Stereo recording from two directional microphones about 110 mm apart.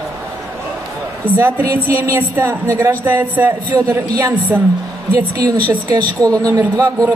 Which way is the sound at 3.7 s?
30° right (ahead or behind).